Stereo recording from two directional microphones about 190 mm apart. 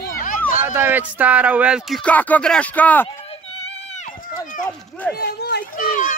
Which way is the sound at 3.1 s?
30° left (ahead or behind).